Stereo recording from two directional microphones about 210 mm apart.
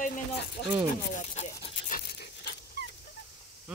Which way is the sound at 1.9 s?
45° left (ahead or behind).